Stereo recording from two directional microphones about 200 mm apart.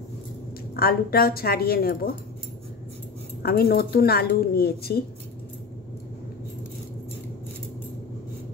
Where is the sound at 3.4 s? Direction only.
50° left (ahead or behind).